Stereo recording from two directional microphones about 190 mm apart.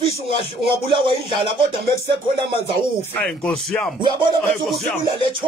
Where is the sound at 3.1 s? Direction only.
5° left (ahead or behind).